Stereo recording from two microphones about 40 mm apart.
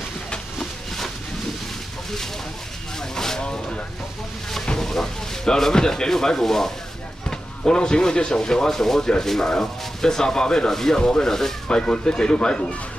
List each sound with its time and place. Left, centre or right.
0.6 s a sound: centre
3.0 s vehicle: centre
4.7 s speech: centre